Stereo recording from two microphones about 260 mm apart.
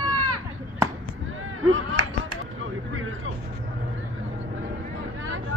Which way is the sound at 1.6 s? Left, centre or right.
Right.